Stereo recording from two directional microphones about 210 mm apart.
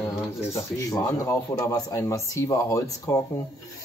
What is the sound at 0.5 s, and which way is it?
Speech, 15° left (ahead or behind).